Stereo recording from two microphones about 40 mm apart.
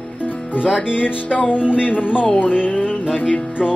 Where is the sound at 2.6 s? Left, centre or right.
Left.